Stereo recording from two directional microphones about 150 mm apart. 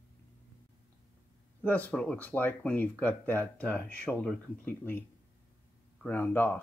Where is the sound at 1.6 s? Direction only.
10° left (ahead or behind).